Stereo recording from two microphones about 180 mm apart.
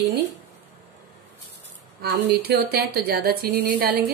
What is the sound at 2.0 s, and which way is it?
A woman's voice, 60° right (ahead or behind).